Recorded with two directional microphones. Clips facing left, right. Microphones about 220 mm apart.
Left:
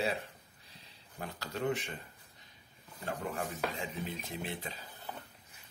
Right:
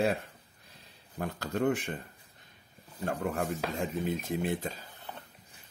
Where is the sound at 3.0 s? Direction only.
45° right (ahead or behind).